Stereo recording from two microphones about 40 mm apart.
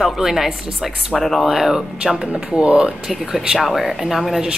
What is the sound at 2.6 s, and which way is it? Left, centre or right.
Speech, right.